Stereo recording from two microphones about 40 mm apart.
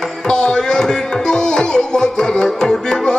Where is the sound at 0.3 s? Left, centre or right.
Left.